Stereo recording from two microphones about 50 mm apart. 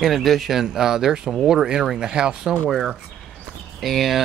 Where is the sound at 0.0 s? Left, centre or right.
Centre.